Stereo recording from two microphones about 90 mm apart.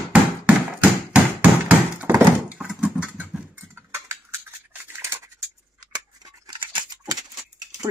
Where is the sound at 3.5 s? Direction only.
25° right (ahead or behind).